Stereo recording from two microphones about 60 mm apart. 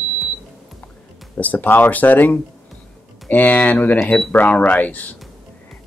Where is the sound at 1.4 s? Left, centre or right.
Left.